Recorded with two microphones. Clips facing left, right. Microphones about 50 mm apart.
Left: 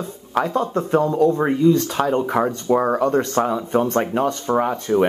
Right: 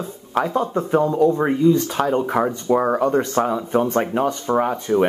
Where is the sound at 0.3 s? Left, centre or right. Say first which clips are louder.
Even; centre.